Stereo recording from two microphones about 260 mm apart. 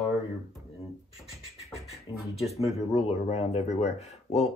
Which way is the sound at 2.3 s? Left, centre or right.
Left.